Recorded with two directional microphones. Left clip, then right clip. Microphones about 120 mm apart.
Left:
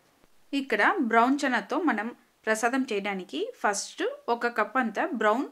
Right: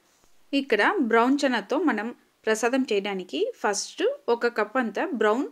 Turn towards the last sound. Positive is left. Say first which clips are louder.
# right 2 dB
turn(degrees=-20)  # may be behind; listen again after turning